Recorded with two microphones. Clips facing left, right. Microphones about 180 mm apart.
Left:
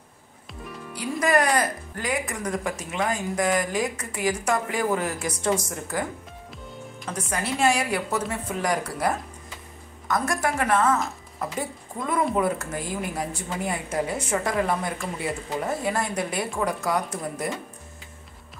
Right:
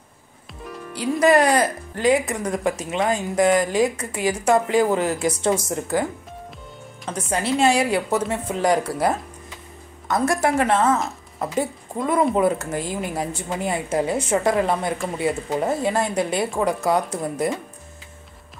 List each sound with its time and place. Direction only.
0.9 s speech: 25° right (ahead or behind)
7.2 s a woman's voice: 25° right (ahead or behind)
12.0 s speech: 25° right (ahead or behind)